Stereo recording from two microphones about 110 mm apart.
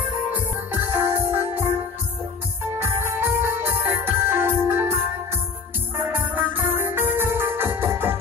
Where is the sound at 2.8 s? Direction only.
20° right (ahead or behind).